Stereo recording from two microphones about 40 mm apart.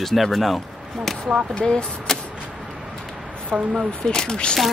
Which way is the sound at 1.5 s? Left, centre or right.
Left.